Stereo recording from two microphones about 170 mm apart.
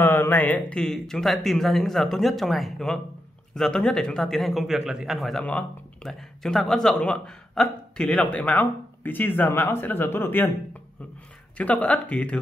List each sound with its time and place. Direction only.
0.0 s a man's voice: 15° left (ahead or behind)